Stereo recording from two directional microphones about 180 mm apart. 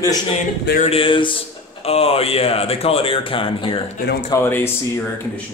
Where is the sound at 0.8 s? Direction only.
30° left (ahead or behind).